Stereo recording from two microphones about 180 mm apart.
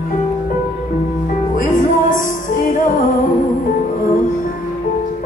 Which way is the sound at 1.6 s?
50° left (ahead or behind).